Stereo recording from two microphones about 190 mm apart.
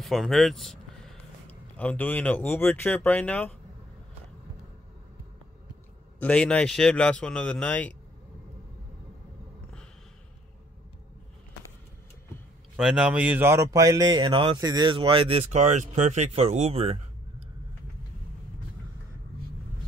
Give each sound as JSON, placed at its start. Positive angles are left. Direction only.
{"t": 0.0, "sound": "speech", "side_deg": 0}
{"t": 6.1, "sound": "speech", "side_deg": 5}
{"t": 12.7, "sound": "speech", "side_deg": -5}